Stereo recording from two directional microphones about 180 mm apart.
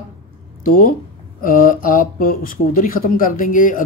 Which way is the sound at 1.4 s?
50° left (ahead or behind).